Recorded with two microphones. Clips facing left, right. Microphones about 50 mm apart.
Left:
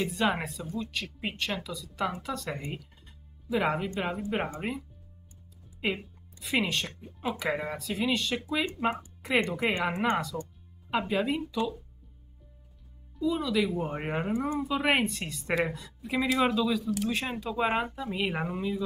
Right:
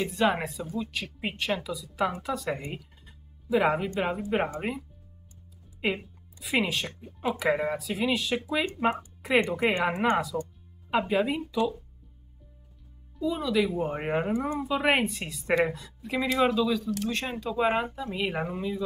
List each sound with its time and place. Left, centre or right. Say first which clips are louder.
0.0 s speech: right 2 dB; centre
13.2 s speech: right 1 dB; centre